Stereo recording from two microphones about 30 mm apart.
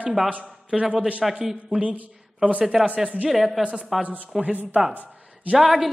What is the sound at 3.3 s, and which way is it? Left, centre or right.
Speech, centre.